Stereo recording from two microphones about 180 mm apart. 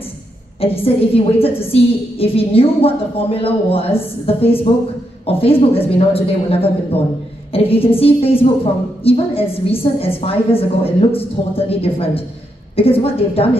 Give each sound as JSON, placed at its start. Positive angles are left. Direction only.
{"t": 0.6, "sound": "a woman's voice", "side_deg": 30}